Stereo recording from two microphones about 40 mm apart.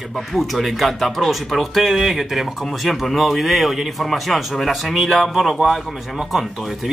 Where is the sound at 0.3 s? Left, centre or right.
Centre.